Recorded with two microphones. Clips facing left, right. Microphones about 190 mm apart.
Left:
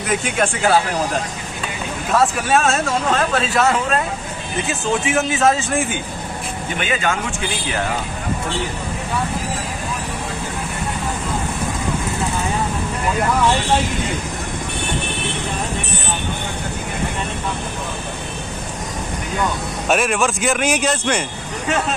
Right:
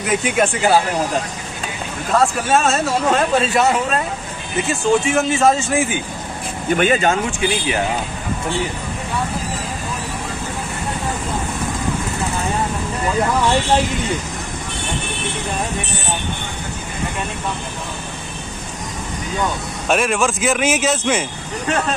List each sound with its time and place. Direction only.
0.1 s speech: centre (ahead or behind)
2.1 s speech: centre (ahead or behind)
4.6 s speech: centre (ahead or behind)
6.8 s speech: 40° right (ahead or behind)
19.9 s speech: centre (ahead or behind)